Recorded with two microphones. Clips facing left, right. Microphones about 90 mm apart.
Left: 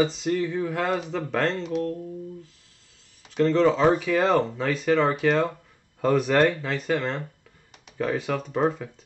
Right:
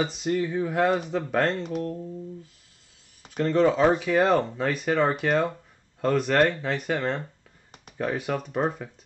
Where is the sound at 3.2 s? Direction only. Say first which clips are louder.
Left 2 dB; 10° right (ahead or behind).